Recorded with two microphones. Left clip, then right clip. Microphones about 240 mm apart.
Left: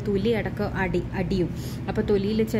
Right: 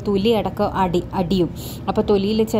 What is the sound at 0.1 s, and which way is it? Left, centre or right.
Speech, centre.